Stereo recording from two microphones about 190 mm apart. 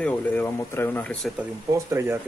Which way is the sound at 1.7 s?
15° right (ahead or behind).